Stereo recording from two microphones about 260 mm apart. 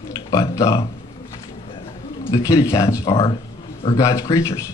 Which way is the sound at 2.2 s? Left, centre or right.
Centre.